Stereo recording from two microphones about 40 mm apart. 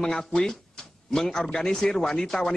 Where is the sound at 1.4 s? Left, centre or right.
Centre.